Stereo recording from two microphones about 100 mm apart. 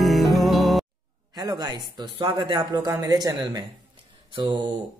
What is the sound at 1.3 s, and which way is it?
Speech, 40° right (ahead or behind).